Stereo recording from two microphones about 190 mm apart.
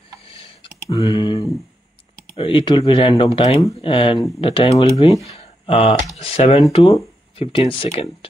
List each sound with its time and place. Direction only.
0.8 s speech: 20° left (ahead or behind)
5.2 s a sound: 30° left (ahead or behind)
6.1 s speech: 30° left (ahead or behind)